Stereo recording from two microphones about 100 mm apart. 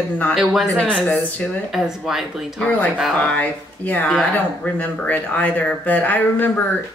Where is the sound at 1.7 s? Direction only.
5° right (ahead or behind).